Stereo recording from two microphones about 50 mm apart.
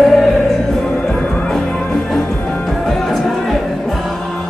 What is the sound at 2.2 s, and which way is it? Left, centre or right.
Music, left.